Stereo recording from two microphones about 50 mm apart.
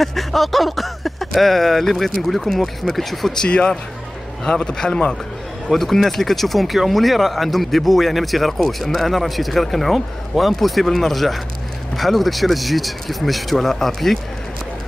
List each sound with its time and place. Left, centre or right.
0.0 s speech: centre
3.3 s a man's voice: centre